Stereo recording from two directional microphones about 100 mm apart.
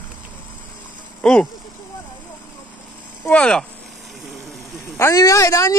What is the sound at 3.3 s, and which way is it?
Speech, 10° left (ahead or behind).